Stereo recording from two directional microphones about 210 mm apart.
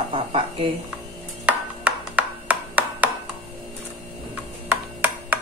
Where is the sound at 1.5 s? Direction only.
5° right (ahead or behind).